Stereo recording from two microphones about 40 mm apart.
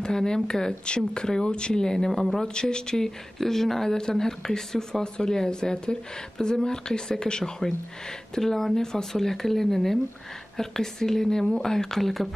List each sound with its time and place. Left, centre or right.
0.0 s speech: centre
2.4 s speech: left
8.4 s speech: centre